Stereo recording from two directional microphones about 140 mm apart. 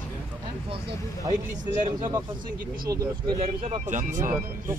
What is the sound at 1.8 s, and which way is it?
Speech, 30° right (ahead or behind).